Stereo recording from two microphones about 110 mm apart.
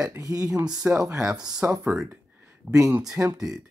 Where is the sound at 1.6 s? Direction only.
20° right (ahead or behind).